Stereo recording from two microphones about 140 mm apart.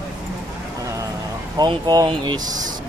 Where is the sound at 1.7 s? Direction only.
35° right (ahead or behind).